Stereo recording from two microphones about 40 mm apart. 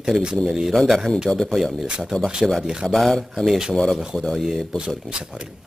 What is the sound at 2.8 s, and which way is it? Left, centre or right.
Speech, centre.